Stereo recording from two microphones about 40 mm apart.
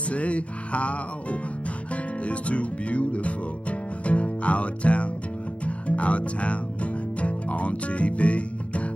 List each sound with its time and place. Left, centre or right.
0.1 s music: left